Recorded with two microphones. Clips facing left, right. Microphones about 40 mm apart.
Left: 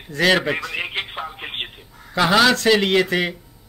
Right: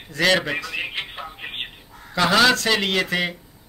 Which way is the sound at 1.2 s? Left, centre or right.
Centre.